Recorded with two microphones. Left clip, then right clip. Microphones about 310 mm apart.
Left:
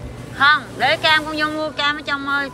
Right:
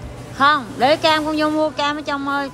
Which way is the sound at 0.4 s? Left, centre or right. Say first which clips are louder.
Even; centre.